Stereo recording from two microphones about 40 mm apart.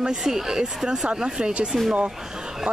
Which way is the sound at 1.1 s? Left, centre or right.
Right.